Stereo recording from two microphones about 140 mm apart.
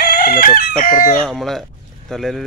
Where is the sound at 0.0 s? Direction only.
90° left.